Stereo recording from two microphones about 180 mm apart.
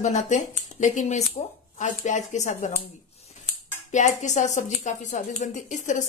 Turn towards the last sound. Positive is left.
turn(degrees=45)  # may be behind; listen again after turning